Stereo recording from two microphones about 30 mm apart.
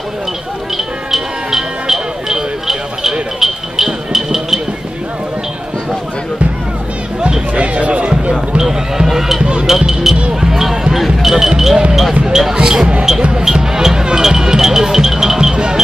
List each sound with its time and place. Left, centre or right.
1.1 s music: centre
7.5 s a sound: right
8.3 s basketball bounce: centre
9.0 s music: centre
9.4 s basketball bounce: right
9.7 s speech: centre
10.4 s basketball bounce: centre
12.5 s speech: right
13.4 s music: centre
15.5 s a sound: right